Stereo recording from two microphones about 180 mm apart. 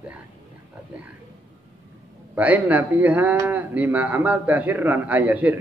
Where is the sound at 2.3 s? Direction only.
10° right (ahead or behind).